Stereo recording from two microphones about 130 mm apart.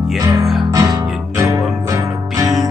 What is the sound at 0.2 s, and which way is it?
Music, 25° right (ahead or behind).